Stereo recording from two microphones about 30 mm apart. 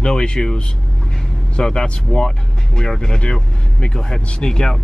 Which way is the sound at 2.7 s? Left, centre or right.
Centre.